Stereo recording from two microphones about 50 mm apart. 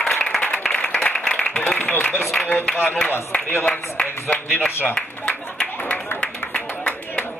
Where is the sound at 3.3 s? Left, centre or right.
Left.